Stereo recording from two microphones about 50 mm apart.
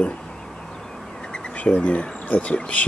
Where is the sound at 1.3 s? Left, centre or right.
Left.